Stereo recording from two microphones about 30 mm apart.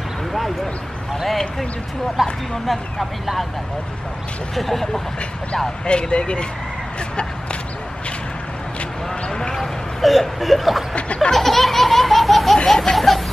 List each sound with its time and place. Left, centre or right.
2.2 s speech: centre
4.6 s speech: centre
5.9 s speech: left
9.3 s basketball bounce: left
9.6 s speech: centre
11.3 s laughter: centre
12.6 s baby laughter: centre